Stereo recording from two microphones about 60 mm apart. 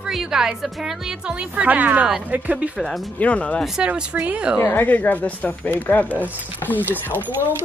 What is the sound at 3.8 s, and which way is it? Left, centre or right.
Speech, right.